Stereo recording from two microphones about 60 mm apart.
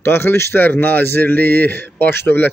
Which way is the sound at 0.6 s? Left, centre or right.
Left.